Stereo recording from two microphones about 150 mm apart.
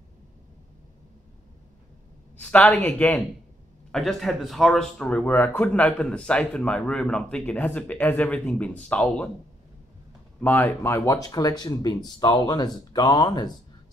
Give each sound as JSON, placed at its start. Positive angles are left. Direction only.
{"t": 2.5, "sound": "speech", "side_deg": 10}
{"t": 10.4, "sound": "speech", "side_deg": 15}